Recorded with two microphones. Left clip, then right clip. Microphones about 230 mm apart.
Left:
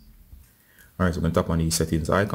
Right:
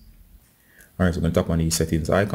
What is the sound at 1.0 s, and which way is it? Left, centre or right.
Speech, centre.